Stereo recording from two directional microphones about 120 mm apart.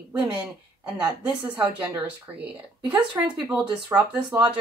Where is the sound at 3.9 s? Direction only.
20° right (ahead or behind).